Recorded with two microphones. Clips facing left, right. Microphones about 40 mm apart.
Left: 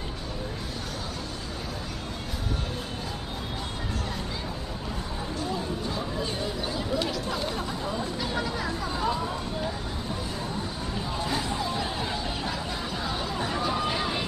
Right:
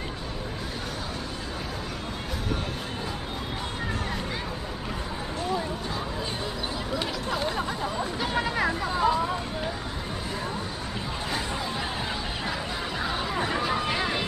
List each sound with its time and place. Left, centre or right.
7.0 s a sound: centre
8.8 s hubbub: centre
13.0 s chatter: right